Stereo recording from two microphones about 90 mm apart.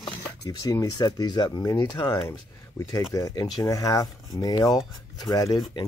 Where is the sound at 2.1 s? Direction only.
35° left (ahead or behind).